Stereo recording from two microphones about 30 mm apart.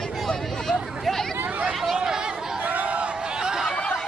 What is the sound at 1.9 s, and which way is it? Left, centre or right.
Chatter, right.